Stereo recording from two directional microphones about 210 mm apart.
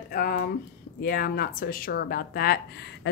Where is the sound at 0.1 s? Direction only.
45° left (ahead or behind).